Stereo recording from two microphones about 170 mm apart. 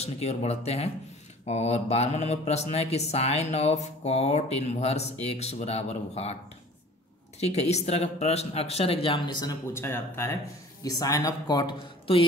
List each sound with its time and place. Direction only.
0.0 s mantra: 40° left (ahead or behind)
7.3 s mantra: 40° left (ahead or behind); by 10.3 s 15° left (ahead or behind)
10.8 s speech: 20° left (ahead or behind)